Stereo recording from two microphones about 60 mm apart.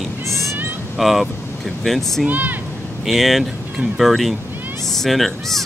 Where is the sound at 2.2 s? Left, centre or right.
Right.